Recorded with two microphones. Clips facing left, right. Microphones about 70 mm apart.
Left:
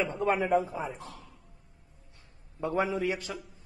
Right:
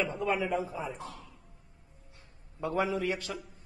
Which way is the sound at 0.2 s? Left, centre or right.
Left.